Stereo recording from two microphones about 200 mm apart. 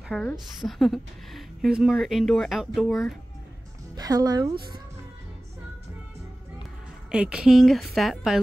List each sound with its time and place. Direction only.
0.1 s a woman's voice: centre (ahead or behind)
3.9 s speech: 20° right (ahead or behind)
7.1 s a woman's voice: 5° right (ahead or behind)